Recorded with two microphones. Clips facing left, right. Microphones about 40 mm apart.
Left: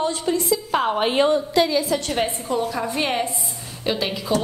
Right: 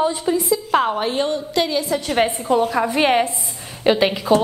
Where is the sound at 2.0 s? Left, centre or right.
Right.